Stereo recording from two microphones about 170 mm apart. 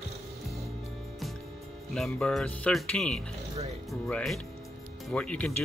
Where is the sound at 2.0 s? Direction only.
Centre (ahead or behind).